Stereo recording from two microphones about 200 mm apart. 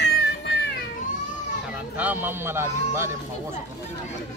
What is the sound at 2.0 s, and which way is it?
A man's voice, 10° right (ahead or behind).